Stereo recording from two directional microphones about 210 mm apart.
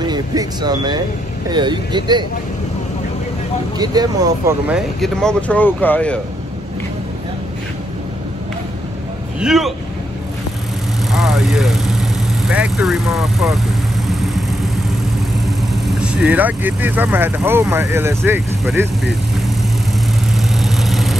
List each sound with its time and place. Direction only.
0.0 s speech: 20° right (ahead or behind)
3.7 s speech: 20° right (ahead or behind)
4.6 s speech: centre (ahead or behind)
9.4 s speech: centre (ahead or behind)
11.1 s vehicle: centre (ahead or behind)
12.4 s speech: 5° right (ahead or behind)
14.0 s vehicle: centre (ahead or behind)
15.4 s speech: centre (ahead or behind)
20.2 s vehicle: centre (ahead or behind)